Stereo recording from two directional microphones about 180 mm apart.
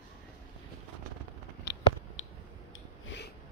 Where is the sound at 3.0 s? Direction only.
80° left.